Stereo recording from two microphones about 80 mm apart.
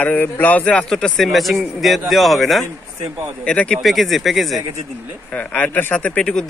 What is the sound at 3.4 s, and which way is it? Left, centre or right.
Speech, centre.